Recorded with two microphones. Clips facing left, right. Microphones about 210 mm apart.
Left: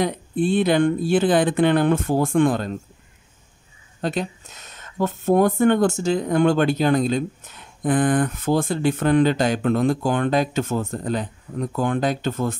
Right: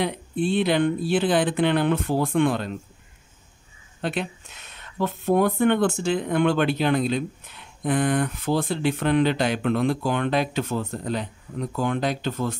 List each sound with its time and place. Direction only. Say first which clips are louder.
0.0 s speech: left 3 dB; 50° left (ahead or behind)
4.0 s speech: left 3 dB; 40° left (ahead or behind)